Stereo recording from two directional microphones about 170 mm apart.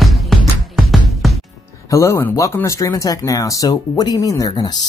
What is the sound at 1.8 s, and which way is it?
Speech, 20° left (ahead or behind).